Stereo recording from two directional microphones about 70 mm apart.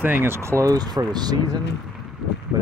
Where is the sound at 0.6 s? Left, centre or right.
Right.